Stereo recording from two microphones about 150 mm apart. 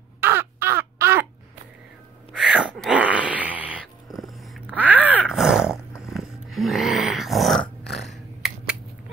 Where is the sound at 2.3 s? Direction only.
5° right (ahead or behind).